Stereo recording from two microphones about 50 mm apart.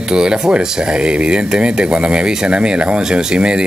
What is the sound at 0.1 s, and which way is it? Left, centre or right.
Speech, centre.